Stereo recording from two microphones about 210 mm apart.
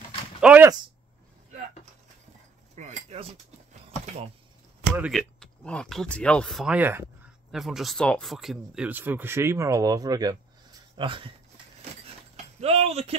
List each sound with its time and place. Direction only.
0.4 s speech: 5° right (ahead or behind)
2.7 s cutlery: 35° right (ahead or behind)
3.8 s a sound: 30° right (ahead or behind)
4.8 s speech: 5° right (ahead or behind)
11.0 s a sound: 25° right (ahead or behind)
12.5 s keys jangling: 30° right (ahead or behind)